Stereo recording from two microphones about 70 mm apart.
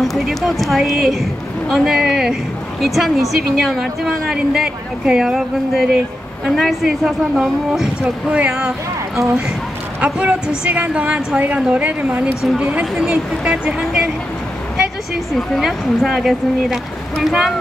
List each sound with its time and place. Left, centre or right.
0.0 s a woman's voice: centre
9.9 s a woman's voice: centre
13.7 s a woman's voice: centre
15.3 s a woman's voice: centre